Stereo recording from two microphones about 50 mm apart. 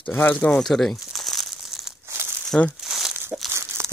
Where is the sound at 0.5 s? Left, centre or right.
Centre.